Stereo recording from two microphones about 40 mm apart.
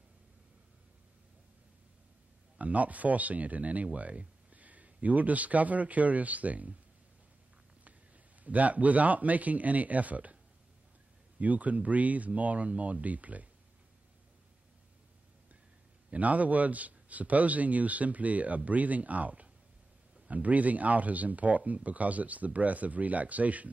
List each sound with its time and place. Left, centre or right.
2.6 s speech: right
8.5 s speech: right
11.3 s speech: right
16.1 s speech: right